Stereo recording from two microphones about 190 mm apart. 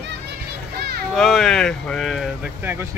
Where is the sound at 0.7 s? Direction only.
55° right (ahead or behind).